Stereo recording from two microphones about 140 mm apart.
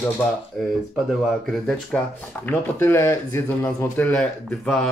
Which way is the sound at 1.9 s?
5° left (ahead or behind).